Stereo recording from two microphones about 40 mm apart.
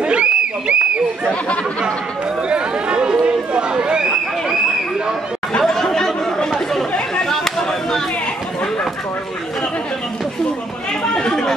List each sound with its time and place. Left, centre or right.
0.0 s a sound: right
2.5 s chatter: right
5.6 s chatter: centre
7.2 s chatter: centre
11.1 s chatter: centre